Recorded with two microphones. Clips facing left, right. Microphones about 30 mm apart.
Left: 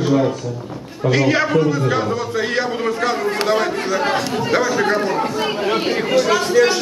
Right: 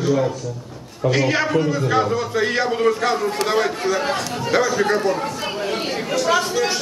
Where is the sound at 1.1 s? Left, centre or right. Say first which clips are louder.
Left 3 dB; centre.